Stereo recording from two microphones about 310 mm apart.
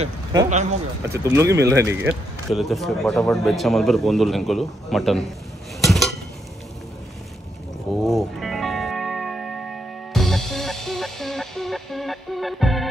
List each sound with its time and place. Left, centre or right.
0.0 s speech: centre
0.5 s speech: right
1.0 s speech: centre
5.8 s dishes: centre
7.9 s music: centre